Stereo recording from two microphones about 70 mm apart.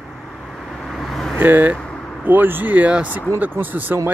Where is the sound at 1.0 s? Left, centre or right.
Centre.